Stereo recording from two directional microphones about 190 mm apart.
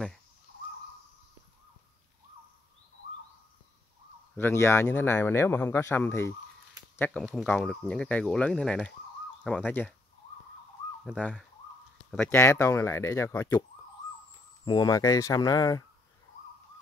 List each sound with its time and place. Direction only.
4.4 s speech: 10° left (ahead or behind)
12.1 s speech: 10° left (ahead or behind)